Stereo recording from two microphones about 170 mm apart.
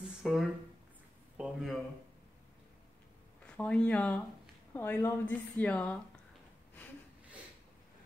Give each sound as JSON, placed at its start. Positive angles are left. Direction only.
{"t": 0.2, "sound": "speech", "side_deg": 0}
{"t": 3.4, "sound": "a woman's voice", "side_deg": 5}